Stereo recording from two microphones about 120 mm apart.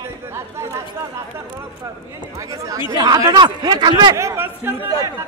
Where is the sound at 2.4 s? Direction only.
30° right (ahead or behind).